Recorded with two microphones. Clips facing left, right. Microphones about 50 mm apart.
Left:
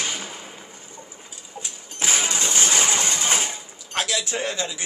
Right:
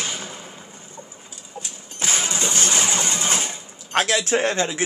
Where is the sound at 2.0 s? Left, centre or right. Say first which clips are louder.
Even; centre.